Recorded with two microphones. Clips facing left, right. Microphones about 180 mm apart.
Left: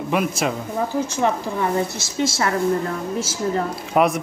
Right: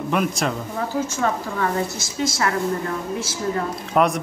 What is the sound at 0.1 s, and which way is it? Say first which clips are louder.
Speech: left 1 dB; 5° left (ahead or behind).